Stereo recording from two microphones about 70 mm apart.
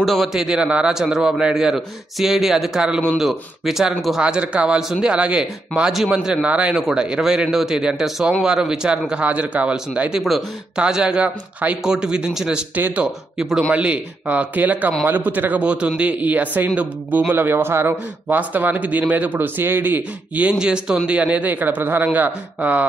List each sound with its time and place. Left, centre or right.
0.0 s a man's voice: centre
0.3 s a man's voice: centre
4.2 s speech: centre
12.7 s a man's voice: right
13.0 s speech: centre
13.7 s a man's voice: centre